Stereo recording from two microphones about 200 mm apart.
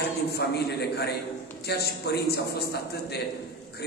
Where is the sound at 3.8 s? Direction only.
55° left (ahead or behind).